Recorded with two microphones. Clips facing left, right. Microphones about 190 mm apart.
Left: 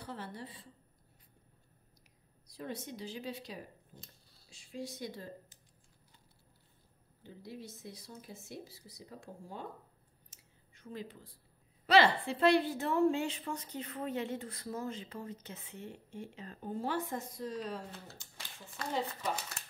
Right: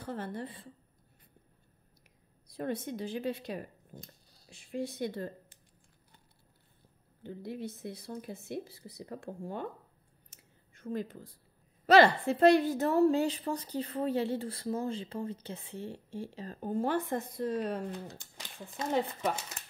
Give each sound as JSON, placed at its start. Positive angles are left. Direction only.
{"t": 0.0, "sound": "a woman's voice", "side_deg": -50}
{"t": 2.4, "sound": "speech", "side_deg": -55}
{"t": 7.2, "sound": "speech", "side_deg": -60}
{"t": 10.3, "sound": "a sound", "side_deg": -50}
{"t": 11.8, "sound": "a woman's voice", "side_deg": -45}